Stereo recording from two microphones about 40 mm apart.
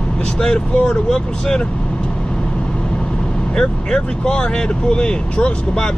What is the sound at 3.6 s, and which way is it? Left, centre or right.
Speech, left.